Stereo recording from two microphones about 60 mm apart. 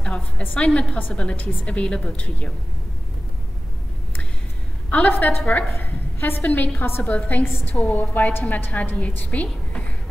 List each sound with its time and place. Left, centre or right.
0.6 s a woman's voice: centre
4.8 s a sound: left
5.1 s a woman's voice: left
7.4 s a woman's voice: left
7.7 s a woman's voice: left